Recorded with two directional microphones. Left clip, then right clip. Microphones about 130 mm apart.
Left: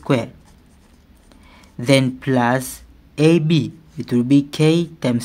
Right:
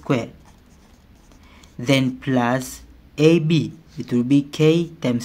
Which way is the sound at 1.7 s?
30° left (ahead or behind).